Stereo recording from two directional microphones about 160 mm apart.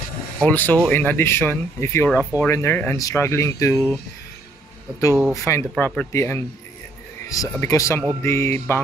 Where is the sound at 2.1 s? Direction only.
10° right (ahead or behind).